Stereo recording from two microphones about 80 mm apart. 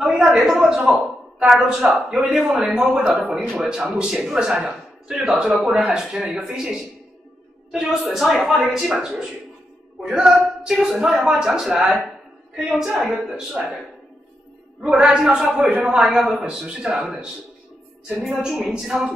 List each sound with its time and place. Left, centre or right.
0.0 s a man's voice: centre
14.8 s a woman's voice: centre